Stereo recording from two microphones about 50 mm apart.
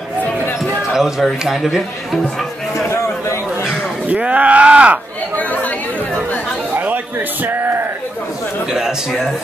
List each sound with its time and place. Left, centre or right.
0.9 s speech: centre
4.1 s speech: right
8.7 s speech: centre